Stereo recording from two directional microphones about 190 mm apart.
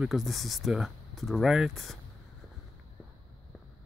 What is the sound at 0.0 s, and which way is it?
Speech, centre (ahead or behind).